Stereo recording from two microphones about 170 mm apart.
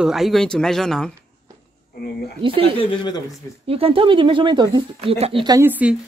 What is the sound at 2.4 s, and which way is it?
Speech, 30° right (ahead or behind).